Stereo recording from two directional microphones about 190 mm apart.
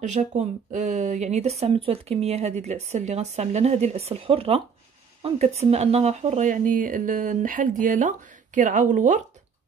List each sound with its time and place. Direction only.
0.0 s speech: 40° right (ahead or behind)